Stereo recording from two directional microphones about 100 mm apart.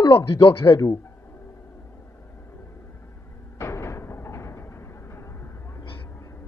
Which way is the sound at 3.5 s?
30° left (ahead or behind).